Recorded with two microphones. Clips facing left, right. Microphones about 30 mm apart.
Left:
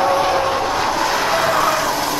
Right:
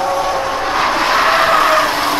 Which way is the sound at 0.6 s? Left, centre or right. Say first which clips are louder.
Right 3 dB; right.